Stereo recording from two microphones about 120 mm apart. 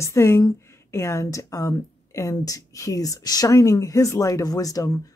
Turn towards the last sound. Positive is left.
turn(degrees=30)  # may be behind; listen again after turning